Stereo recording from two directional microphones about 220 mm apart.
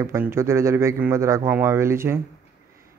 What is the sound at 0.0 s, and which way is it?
Speech, 10° right (ahead or behind).